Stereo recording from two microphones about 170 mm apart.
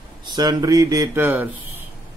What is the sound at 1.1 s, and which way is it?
Speech, 10° right (ahead or behind).